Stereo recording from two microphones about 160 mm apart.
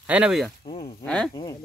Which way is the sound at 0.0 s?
10° right (ahead or behind).